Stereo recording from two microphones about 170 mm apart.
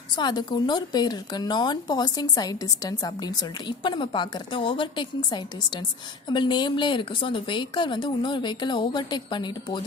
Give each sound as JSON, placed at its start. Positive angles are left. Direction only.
{"t": 0.1, "sound": "speech", "side_deg": 25}